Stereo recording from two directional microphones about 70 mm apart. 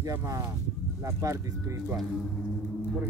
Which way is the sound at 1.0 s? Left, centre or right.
Right.